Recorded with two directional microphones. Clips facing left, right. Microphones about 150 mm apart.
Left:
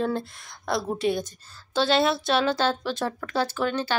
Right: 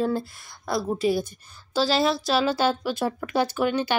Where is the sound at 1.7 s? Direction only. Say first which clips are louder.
Even; centre (ahead or behind).